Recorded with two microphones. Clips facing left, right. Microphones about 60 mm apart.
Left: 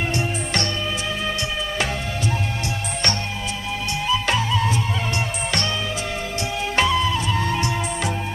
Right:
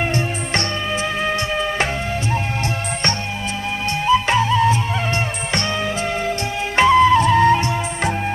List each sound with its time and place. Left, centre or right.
0.1 s music: right
4.3 s music: right
6.8 s music: right